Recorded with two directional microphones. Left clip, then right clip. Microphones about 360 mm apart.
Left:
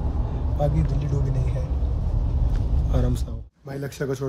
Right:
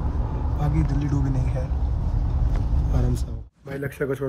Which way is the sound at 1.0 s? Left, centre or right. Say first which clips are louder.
Right 2 dB; centre.